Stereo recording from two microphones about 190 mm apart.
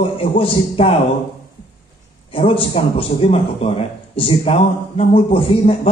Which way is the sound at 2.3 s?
30° left (ahead or behind).